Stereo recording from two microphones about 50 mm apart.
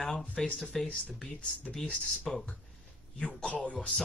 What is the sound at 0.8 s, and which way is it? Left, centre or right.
Speech, left.